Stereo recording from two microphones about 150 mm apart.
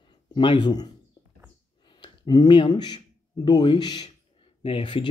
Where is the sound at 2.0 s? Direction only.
30° left (ahead or behind).